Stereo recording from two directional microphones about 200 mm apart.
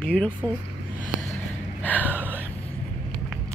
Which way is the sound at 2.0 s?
10° right (ahead or behind).